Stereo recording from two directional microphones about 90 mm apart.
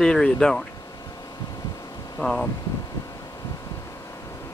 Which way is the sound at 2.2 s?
5° left (ahead or behind).